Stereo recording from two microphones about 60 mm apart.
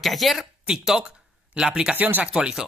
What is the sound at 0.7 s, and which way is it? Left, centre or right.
Speech, centre.